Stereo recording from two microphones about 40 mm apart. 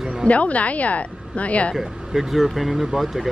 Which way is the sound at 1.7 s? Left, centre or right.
Centre.